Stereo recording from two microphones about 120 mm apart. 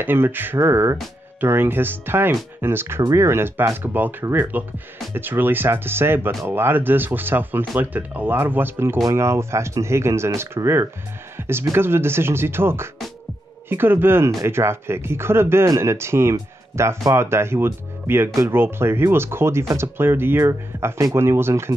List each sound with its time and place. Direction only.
0.0 s speech: 15° right (ahead or behind)